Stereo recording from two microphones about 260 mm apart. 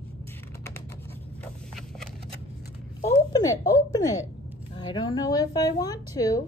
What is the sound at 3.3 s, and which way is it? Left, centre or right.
A woman's voice, centre.